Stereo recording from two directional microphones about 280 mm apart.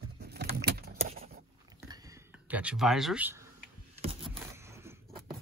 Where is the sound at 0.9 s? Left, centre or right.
Right.